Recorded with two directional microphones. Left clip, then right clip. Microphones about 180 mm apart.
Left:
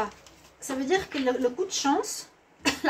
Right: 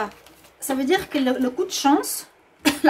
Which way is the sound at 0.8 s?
65° right (ahead or behind).